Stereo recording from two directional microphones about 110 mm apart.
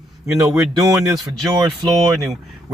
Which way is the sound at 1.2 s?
Centre (ahead or behind).